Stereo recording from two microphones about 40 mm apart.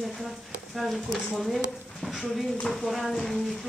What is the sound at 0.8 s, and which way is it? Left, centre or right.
Speech, centre.